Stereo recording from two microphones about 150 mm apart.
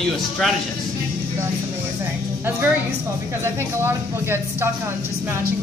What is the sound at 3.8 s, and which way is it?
Speech, 15° right (ahead or behind).